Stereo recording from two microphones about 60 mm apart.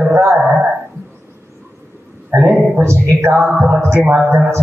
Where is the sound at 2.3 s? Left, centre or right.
Right.